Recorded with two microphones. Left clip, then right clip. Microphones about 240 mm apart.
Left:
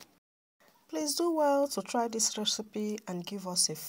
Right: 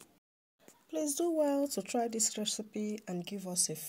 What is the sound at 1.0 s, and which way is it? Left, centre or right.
Speech, centre.